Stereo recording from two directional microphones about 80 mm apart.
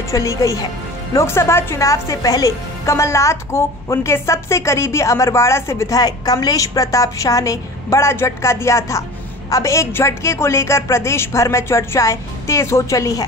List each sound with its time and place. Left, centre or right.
0.1 s a woman's voice: left
5.9 s a woman's voice: left